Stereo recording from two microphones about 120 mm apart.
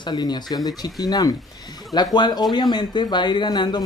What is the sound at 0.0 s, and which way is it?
Speech, 35° left (ahead or behind).